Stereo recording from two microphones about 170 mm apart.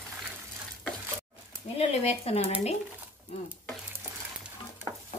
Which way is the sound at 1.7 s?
35° left (ahead or behind).